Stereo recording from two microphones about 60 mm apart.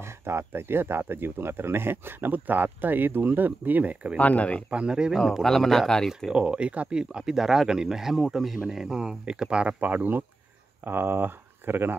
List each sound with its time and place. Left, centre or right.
0.2 s speech: right
4.2 s speech: left
4.6 s speech: centre
5.1 s a man's voice: centre
6.3 s speech: centre; by 11.9 s right